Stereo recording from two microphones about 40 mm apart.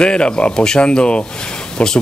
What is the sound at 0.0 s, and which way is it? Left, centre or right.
Speech, left.